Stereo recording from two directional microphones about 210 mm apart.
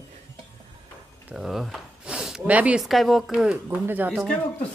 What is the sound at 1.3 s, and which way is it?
Speech, centre (ahead or behind).